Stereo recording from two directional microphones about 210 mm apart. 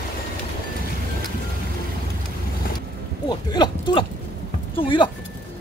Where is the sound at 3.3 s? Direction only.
20° left (ahead or behind).